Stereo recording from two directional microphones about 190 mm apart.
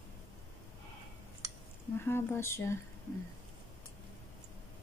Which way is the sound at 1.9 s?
10° left (ahead or behind).